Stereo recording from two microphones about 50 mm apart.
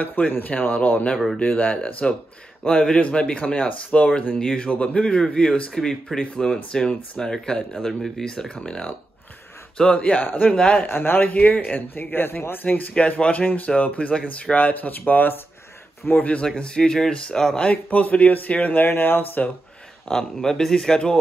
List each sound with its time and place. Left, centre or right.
0.0 s speech: left
1.1 s speech: centre
1.4 s speech: left
2.6 s speech: centre
10.2 s speech: left
10.5 s speech: centre
10.9 s speech: left
11.3 s speech: left
12.9 s speech: left
16.4 s speech: centre
17.6 s speech: left
18.9 s speech: left
20.1 s speech: centre